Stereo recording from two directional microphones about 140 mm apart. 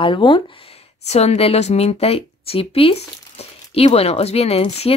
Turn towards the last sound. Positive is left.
turn(degrees=45)  # may be behind; listen again after turning